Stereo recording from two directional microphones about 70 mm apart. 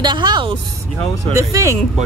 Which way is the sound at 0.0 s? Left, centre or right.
Right.